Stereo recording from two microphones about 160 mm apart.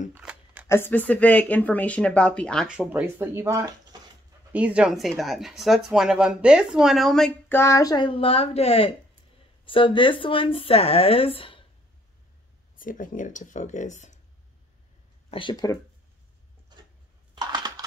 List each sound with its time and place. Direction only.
0.1 s a sound: 10° right (ahead or behind)
0.7 s speech: 15° left (ahead or behind)
7.4 s speech: 15° left (ahead or behind); by 11.6 s 35° left (ahead or behind)
12.7 s speech: 60° left (ahead or behind)
15.3 s speech: 30° left (ahead or behind)
17.4 s typing: 25° right (ahead or behind)